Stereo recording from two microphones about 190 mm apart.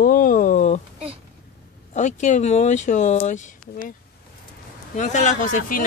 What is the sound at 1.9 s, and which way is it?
Speech, 40° left (ahead or behind).